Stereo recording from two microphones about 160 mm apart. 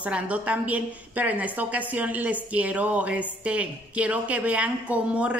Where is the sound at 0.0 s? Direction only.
10° right (ahead or behind).